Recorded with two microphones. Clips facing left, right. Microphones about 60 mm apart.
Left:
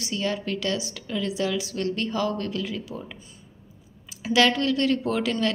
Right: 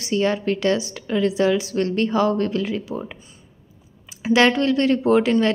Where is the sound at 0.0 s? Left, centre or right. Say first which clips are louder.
Right 7 dB; right.